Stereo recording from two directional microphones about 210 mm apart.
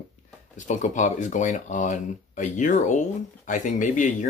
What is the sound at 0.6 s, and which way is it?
Speech, 35° left (ahead or behind).